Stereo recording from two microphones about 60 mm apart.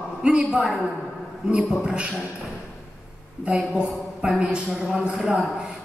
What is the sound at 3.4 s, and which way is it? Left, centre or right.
Speech, centre.